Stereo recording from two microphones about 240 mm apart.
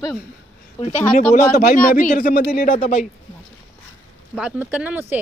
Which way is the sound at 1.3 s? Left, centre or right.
Left.